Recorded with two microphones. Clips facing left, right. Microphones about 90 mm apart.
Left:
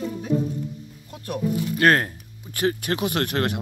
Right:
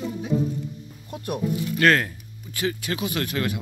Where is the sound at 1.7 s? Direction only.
35° left (ahead or behind).